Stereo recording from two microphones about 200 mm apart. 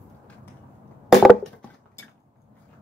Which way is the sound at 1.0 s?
Centre (ahead or behind).